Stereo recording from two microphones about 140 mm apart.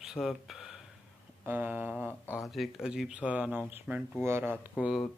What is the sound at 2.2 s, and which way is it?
Speech, 15° left (ahead or behind).